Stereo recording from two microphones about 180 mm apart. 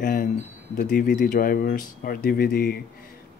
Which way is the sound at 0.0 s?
50° left (ahead or behind).